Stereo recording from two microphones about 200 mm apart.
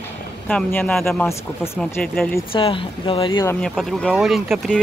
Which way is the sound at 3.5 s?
5° left (ahead or behind).